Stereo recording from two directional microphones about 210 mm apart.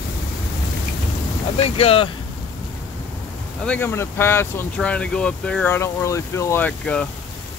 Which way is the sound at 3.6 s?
10° left (ahead or behind).